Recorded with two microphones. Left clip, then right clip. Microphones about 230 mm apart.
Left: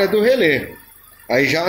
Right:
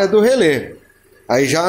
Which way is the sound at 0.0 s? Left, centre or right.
Centre.